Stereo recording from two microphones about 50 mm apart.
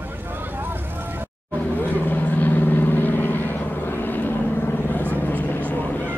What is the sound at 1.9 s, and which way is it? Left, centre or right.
Vehicle, left.